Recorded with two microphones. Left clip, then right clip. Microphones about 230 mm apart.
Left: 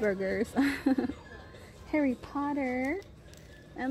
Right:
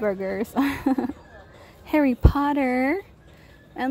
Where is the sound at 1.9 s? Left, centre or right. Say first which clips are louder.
Right 9 dB; right.